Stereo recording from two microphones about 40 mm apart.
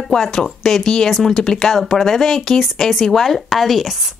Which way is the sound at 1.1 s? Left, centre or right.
Centre.